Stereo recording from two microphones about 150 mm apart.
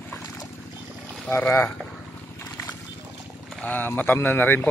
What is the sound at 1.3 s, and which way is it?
Speech, 15° left (ahead or behind).